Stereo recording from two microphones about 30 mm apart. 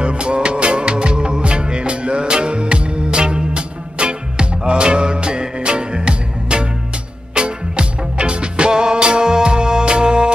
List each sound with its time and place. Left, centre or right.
0.0 s music: right